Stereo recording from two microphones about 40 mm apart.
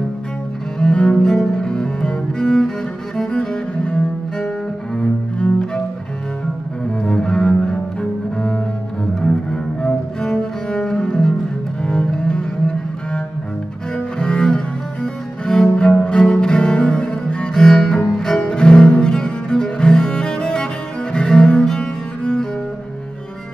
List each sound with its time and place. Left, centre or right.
0.7 s cello: left
7.0 s cello: left